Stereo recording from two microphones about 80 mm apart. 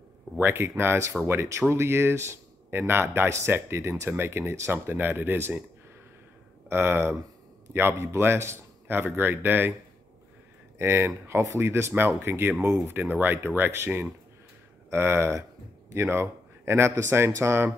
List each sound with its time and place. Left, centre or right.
0.4 s speech: right
6.7 s a man's voice: right
10.8 s a man's voice: right